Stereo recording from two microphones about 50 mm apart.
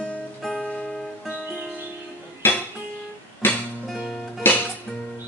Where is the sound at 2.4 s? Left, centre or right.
Left.